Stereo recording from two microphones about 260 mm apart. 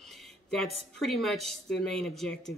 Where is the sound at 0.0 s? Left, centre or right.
Centre.